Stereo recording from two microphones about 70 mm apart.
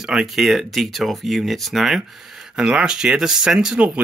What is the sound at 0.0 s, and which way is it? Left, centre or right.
Speech, centre.